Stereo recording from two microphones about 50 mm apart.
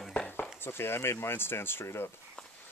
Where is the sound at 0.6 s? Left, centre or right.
Left.